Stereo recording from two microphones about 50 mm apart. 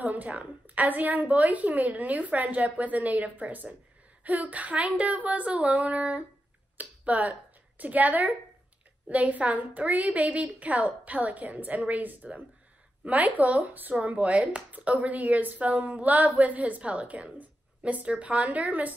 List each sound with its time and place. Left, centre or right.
0.0 s speech: right